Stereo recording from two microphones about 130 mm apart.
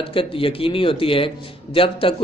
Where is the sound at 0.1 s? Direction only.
45° left (ahead or behind).